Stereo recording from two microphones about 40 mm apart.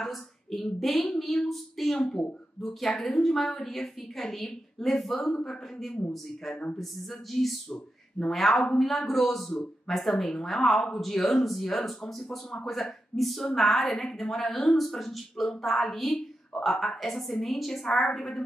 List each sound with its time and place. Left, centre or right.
0.0 s speech: centre
3.0 s speech: centre